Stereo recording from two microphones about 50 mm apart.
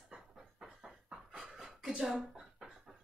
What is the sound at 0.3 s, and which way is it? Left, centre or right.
Train, centre.